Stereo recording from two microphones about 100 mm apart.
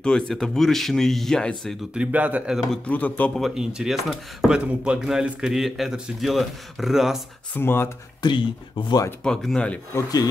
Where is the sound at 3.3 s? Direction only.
5° right (ahead or behind).